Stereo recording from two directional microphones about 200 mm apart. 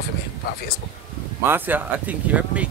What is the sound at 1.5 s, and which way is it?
Speech, 10° right (ahead or behind).